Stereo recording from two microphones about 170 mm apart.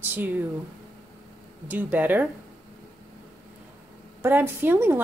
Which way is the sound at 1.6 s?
10° right (ahead or behind).